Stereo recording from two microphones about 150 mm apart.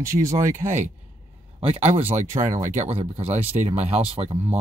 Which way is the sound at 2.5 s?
55° right (ahead or behind).